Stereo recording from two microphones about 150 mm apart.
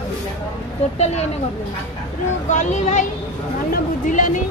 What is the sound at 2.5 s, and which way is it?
A woman's voice, 55° left (ahead or behind).